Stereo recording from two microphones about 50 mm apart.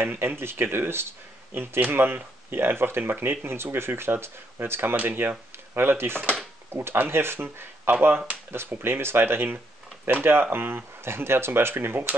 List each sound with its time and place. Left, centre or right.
0.0 s speech: right
11.0 s speech: right